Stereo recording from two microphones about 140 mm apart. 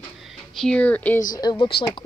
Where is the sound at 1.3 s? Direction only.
30° left (ahead or behind).